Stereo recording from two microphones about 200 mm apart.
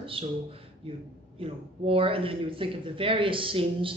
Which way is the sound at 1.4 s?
30° right (ahead or behind).